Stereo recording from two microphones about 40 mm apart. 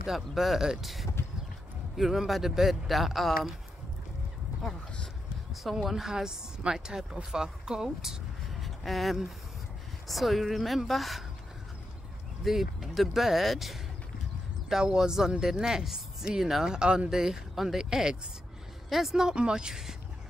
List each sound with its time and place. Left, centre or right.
0.0 s speech: centre
5.5 s speech: centre
8.5 s speech: centre
12.4 s speech: centre
14.8 s speech: centre
16.7 s speech: right
17.1 s speech: centre
18.9 s speech: centre
19.3 s speech: right